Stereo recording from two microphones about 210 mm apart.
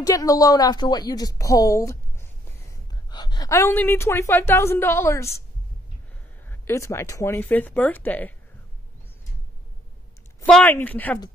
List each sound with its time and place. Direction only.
0.0 s a woman's voice: 15° left (ahead or behind)
6.5 s a woman's voice: 10° left (ahead or behind)
10.4 s a woman's voice: 5° left (ahead or behind)